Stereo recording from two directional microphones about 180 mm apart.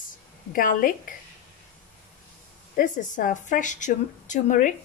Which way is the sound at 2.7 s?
45° left (ahead or behind).